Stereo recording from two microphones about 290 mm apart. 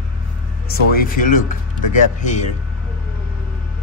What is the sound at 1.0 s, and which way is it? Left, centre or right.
Speech, left.